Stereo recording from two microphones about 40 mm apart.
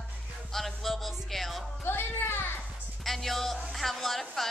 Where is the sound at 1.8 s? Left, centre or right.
Left.